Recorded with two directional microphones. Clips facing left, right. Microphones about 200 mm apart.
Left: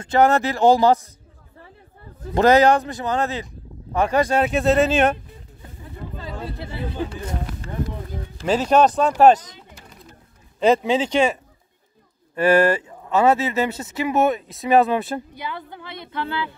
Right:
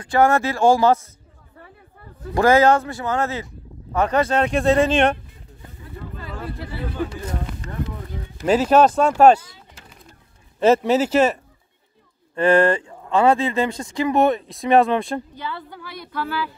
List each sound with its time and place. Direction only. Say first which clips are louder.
0.0 s speech: even; 20° left (ahead or behind)
2.3 s speech: even; 20° left (ahead or behind)
6.1 s a sound: even; 25° left (ahead or behind)
8.5 s speech: right 3 dB; 5° right (ahead or behind)
10.6 s speech: right 2 dB; 5° right (ahead or behind)
12.4 s speech: even; 5° left (ahead or behind); by 16.5 s 25° left (ahead or behind)